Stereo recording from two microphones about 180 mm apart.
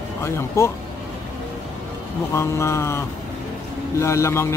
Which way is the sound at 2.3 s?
15° left (ahead or behind).